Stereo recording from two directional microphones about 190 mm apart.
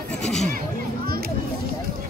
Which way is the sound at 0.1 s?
5° left (ahead or behind).